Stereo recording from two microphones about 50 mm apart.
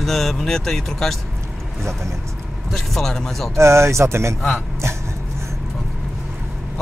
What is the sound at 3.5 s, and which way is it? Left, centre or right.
Speech, right.